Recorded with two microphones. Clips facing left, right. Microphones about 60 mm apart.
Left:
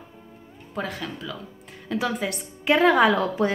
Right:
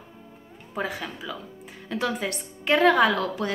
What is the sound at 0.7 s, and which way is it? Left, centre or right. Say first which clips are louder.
A woman's voice: even; centre.